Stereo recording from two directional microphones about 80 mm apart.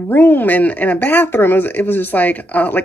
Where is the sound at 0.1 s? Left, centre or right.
Left.